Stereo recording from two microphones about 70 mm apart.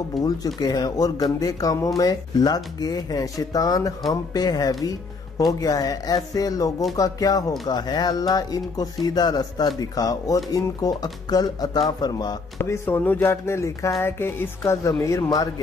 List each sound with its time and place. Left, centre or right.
0.2 s speech: centre
0.6 s speech: left
7.6 s speech: left
9.8 s speech: left
12.5 s music: left
13.0 s speech: left
13.3 s speech: left
14.0 s music: left
14.6 s speech: left